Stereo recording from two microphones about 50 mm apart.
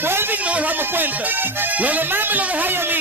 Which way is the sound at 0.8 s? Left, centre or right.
Right.